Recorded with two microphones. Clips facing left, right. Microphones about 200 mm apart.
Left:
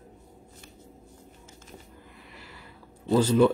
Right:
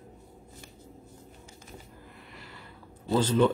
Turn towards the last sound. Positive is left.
turn(degrees=10)  # may be behind; listen again after turning